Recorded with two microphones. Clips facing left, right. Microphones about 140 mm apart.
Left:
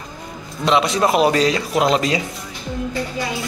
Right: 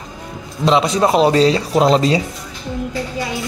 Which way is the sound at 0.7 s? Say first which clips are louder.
Right 2 dB; 30° right (ahead or behind).